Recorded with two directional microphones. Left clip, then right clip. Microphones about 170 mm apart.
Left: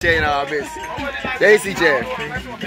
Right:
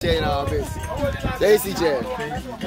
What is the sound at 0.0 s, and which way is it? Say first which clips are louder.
Speech: left 5 dB; 5° right (ahead or behind).